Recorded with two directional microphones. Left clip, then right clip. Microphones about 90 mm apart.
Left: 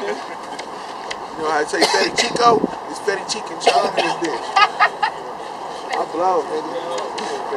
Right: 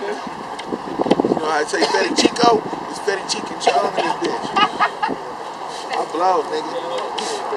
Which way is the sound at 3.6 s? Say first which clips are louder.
Left 1 dB; 35° left (ahead or behind).